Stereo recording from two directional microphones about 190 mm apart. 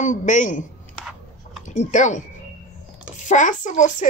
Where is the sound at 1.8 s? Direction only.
40° left (ahead or behind).